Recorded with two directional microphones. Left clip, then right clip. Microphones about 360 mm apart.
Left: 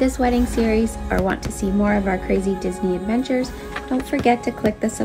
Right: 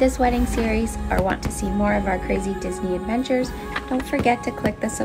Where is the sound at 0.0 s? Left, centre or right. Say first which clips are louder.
Even; centre.